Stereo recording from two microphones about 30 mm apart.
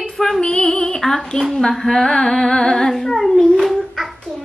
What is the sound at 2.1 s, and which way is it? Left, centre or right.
Singing, left.